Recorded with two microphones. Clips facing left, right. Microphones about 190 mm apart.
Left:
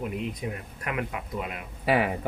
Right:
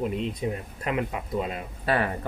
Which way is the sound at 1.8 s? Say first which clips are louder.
Left 2 dB; 10° left (ahead or behind).